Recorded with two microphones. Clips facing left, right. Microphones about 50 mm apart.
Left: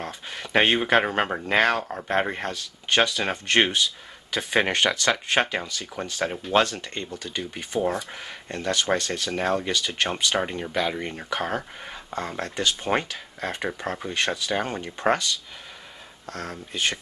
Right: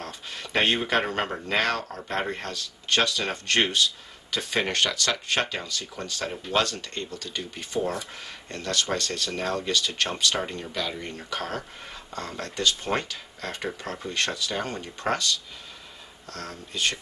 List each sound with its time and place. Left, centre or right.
0.0 s speech: left
16.3 s speech: centre